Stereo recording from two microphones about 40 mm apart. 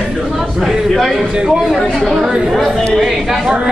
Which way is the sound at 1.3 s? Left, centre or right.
Centre.